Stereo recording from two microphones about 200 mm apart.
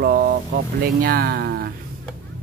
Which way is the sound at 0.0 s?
50° right (ahead or behind).